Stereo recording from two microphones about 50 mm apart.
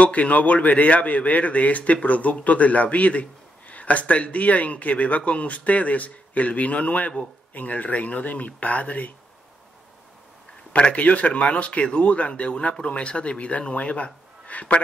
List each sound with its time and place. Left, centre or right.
0.0 s a man's voice: left
10.7 s a man's voice: left